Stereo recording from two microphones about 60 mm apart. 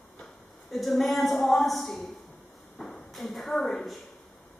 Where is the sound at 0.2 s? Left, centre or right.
Centre.